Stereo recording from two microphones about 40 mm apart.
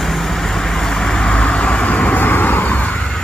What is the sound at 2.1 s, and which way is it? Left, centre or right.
Vehicle, left.